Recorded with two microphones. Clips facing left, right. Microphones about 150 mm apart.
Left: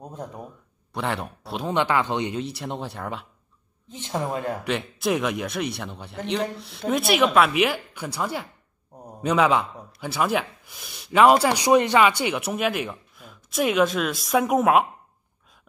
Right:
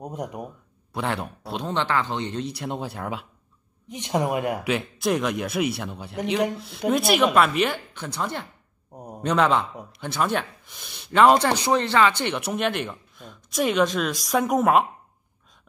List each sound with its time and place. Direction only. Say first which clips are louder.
0.0 s a woman's voice: right 4 dB; 15° right (ahead or behind)
0.9 s speech: even; centre (ahead or behind)
1.7 s speech: left 3 dB; 15° left (ahead or behind)
2.4 s speech: right 1 dB; centre (ahead or behind)
3.8 s a woman's voice: right 4 dB; 15° right (ahead or behind)
4.6 s speech: right 1 dB; centre (ahead or behind)
8.9 s a sound: right 3 dB; 15° right (ahead or behind)
9.2 s speech: left 1 dB; 5° left (ahead or behind)